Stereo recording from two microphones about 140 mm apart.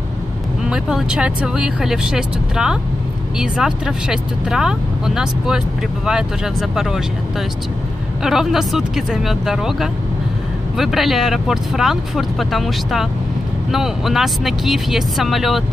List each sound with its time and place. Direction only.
0.7 s speech: 5° right (ahead or behind)